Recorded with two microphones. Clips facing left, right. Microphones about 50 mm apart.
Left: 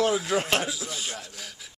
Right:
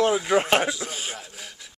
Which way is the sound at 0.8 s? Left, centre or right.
Right.